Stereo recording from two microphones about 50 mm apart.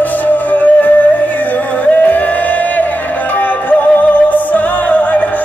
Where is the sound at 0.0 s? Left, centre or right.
Left.